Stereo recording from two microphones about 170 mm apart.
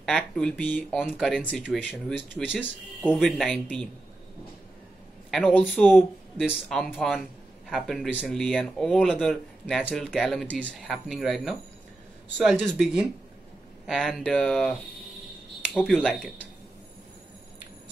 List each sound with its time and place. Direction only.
0.0 s speech: 5° left (ahead or behind)
5.3 s a woman's voice: centre (ahead or behind)
6.5 s speech: 10° left (ahead or behind)
15.9 s speech: centre (ahead or behind)